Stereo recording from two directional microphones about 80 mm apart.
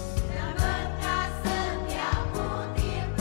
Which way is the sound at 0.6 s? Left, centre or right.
Centre.